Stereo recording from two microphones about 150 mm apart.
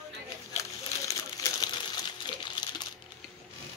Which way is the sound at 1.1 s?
25° left (ahead or behind).